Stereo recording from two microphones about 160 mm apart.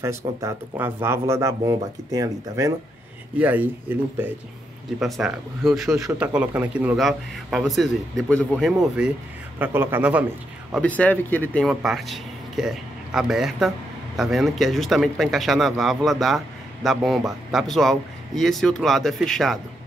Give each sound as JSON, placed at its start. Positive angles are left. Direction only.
{"t": 0.0, "sound": "speech", "side_deg": -20}
{"t": 3.3, "sound": "speech", "side_deg": -10}
{"t": 5.0, "sound": "speech", "side_deg": 0}
{"t": 10.8, "sound": "speech", "side_deg": 10}
{"t": 11.6, "sound": "speech", "side_deg": 0}